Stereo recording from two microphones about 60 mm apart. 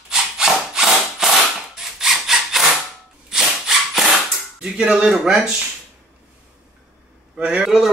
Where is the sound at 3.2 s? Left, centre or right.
Centre.